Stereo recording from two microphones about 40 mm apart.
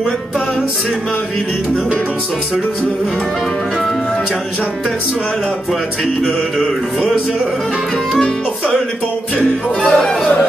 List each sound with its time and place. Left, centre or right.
9.4 s music: left